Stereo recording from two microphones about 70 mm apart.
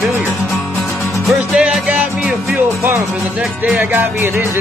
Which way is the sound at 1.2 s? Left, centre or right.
Centre.